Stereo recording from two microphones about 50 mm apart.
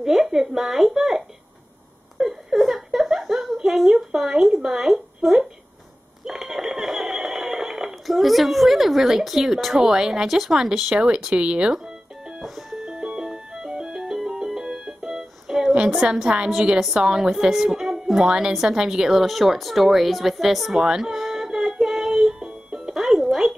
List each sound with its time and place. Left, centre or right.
0.0 s speech: centre
2.1 s a sound: centre
10.2 s a woman's voice: centre; by 11.7 s right
11.7 s music: centre
16.0 s a woman's voice: centre
20.8 s a sound: centre
21.8 s music: centre
22.9 s music: centre